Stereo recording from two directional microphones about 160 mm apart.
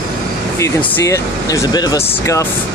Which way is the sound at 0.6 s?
15° left (ahead or behind).